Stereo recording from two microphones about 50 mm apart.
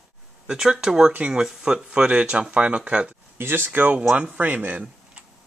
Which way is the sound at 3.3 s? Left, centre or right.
Right.